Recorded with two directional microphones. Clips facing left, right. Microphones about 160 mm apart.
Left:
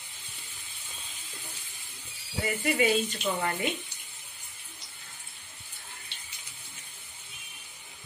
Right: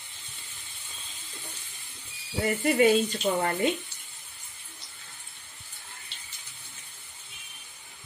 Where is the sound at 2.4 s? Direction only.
40° right (ahead or behind).